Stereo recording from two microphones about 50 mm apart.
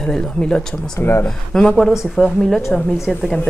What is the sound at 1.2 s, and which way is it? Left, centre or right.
Speech, centre.